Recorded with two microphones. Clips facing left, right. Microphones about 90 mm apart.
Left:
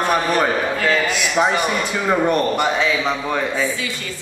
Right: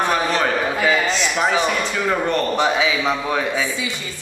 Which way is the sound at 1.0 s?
10° left (ahead or behind).